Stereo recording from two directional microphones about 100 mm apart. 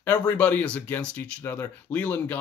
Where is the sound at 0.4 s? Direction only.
15° left (ahead or behind).